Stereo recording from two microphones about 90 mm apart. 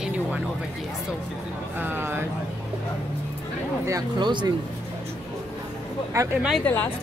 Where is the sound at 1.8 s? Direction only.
25° right (ahead or behind).